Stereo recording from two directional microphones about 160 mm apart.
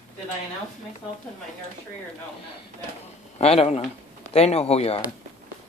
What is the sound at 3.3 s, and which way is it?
Speech, 40° left (ahead or behind).